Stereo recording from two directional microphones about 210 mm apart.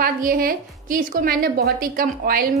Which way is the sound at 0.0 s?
40° right (ahead or behind).